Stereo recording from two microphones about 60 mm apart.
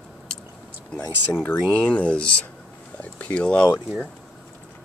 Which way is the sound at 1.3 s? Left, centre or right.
Left.